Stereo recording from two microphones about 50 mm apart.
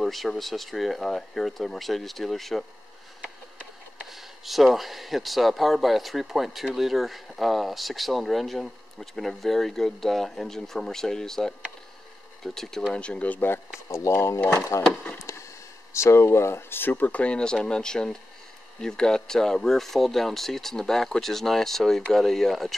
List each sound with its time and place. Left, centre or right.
0.0 s speech: centre
4.0 s speech: centre
12.9 s speech: centre
13.3 s speech: left
13.9 s speech: left
15.3 s a sound: left
15.9 s speech: left
17.2 s speech: centre